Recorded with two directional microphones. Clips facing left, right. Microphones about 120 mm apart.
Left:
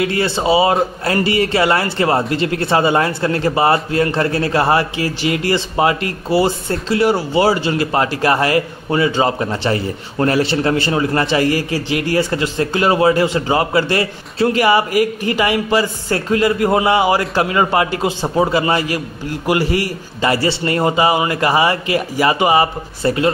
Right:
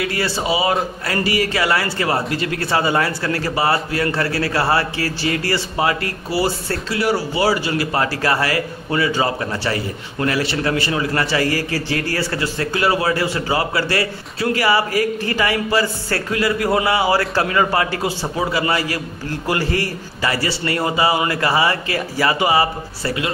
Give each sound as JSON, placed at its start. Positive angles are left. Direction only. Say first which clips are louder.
{"t": 0.0, "sound": "a man's voice", "louder": "left 5 dB", "side_deg": 25}
{"t": 20.2, "sound": "a man's voice", "louder": "left 5 dB", "side_deg": 25}